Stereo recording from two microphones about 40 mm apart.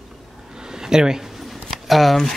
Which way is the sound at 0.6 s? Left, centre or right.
Centre.